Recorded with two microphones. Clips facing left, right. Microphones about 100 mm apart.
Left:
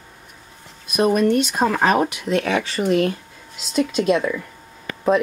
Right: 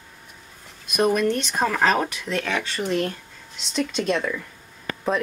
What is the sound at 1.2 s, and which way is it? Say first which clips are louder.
Speech: left 5 dB; 15° left (ahead or behind).